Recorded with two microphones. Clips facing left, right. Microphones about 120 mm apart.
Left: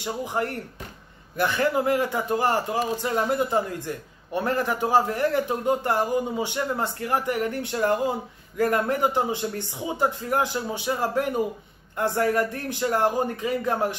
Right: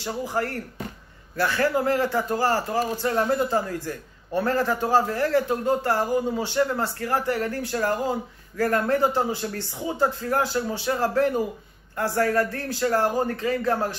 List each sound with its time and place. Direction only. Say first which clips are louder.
0.0 s a man's voice: even; 20° left (ahead or behind)